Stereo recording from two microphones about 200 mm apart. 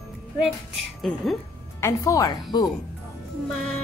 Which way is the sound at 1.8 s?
15° left (ahead or behind).